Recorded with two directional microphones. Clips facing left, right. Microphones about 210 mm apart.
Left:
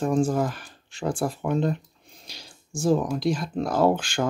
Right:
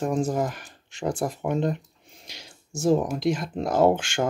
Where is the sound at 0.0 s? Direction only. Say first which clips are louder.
Left 2 dB; 20° right (ahead or behind).